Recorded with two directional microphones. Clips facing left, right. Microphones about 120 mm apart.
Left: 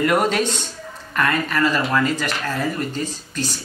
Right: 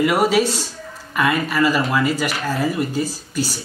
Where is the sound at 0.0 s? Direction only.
5° right (ahead or behind).